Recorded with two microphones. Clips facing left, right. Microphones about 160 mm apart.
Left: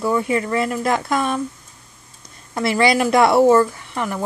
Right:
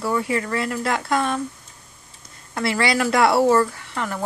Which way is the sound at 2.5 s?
20° left (ahead or behind).